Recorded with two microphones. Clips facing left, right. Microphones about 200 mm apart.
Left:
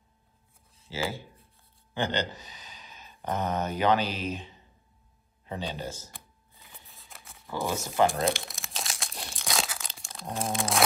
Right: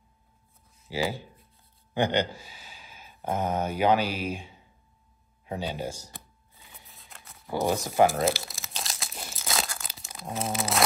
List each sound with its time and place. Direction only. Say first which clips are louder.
0.8 s a man's voice: right 3 dB; 15° right (ahead or behind)
6.5 s shuffling cards: even; centre (ahead or behind)
8.0 s crumpling: right 2 dB; 5° right (ahead or behind)